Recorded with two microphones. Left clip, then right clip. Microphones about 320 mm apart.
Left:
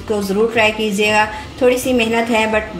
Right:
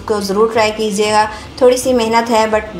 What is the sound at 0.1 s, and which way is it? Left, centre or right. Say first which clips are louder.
A woman's voice: right 3 dB; right.